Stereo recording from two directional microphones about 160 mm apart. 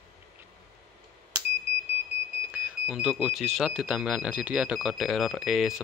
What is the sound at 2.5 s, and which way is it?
Speech, 5° right (ahead or behind).